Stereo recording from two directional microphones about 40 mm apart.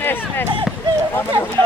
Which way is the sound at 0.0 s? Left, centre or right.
Left.